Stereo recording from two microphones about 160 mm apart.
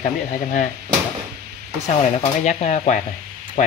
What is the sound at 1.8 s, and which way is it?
Speech, 45° left (ahead or behind).